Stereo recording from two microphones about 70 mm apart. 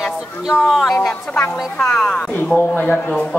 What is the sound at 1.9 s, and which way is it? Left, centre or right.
Speech, centre.